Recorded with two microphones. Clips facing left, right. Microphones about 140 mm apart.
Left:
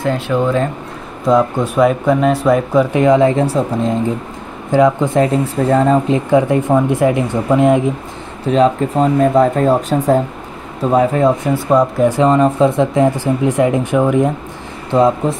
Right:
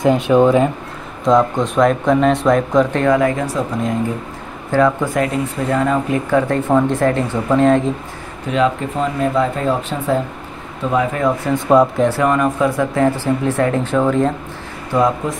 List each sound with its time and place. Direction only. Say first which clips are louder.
0.0 s speech: right 4 dB; 15° right (ahead or behind)
1.2 s speech: left 1 dB; 5° left (ahead or behind); by 3.9 s 25° left (ahead or behind)
4.6 s speech: left 3 dB; 15° left (ahead or behind)
8.5 s speech: left 4 dB; 35° left (ahead or behind)
11.5 s speech: even; 5° left (ahead or behind)
12.1 s speech: left 4 dB; 25° left (ahead or behind)
14.9 s speech: left 4 dB; 25° left (ahead or behind)